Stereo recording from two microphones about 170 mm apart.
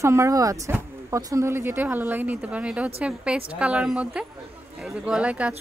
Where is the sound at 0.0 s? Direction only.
15° right (ahead or behind).